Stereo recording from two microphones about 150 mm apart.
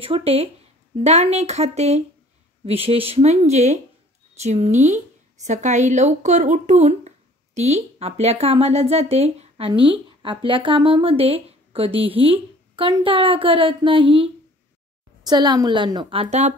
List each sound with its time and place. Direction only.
0.0 s a woman's voice: 40° right (ahead or behind)